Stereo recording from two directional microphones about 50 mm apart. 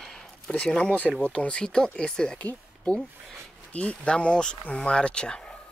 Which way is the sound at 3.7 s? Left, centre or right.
Left.